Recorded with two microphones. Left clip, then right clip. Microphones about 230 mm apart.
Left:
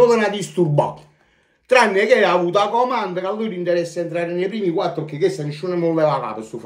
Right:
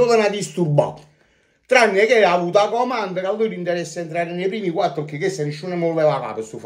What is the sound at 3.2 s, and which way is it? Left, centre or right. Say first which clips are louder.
Speech: right 1 dB; centre.